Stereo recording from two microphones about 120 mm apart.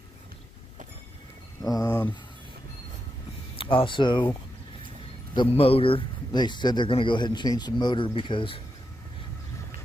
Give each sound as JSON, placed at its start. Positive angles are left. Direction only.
{"t": 1.6, "sound": "a sound", "side_deg": 30}
{"t": 3.5, "sound": "speech", "side_deg": 45}
{"t": 5.6, "sound": "speech", "side_deg": 50}